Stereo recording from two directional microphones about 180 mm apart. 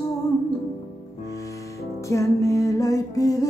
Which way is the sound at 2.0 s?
15° left (ahead or behind).